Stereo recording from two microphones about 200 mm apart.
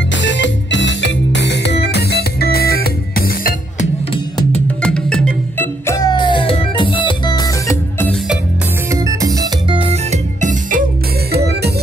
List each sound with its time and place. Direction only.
0.1 s music: 65° left (ahead or behind); by 3.5 s 50° left (ahead or behind)
4.8 s music: 5° left (ahead or behind)
8.9 s music: 15° right (ahead or behind); by 10.8 s 35° right (ahead or behind)
11.3 s music: 55° right (ahead or behind)